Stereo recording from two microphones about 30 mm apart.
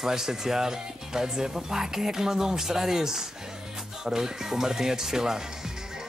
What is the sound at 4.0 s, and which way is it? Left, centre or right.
Speech, centre.